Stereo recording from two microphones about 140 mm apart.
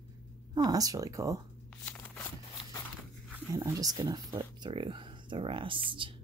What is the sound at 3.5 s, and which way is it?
Speech, 25° right (ahead or behind).